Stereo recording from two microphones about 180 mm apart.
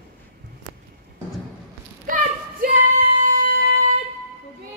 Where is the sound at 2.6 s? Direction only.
45° right (ahead or behind).